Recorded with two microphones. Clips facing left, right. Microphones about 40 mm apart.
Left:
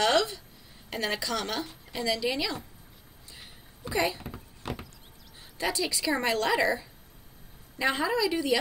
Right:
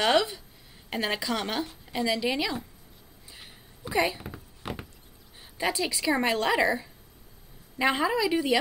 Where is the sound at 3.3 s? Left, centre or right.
Centre.